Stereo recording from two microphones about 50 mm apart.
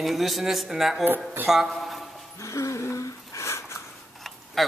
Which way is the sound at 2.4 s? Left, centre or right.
Left.